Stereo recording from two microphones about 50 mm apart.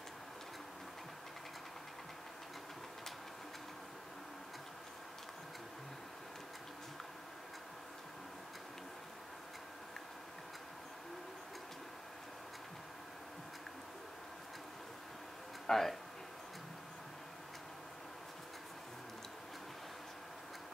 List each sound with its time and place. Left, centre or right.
15.6 s speech: centre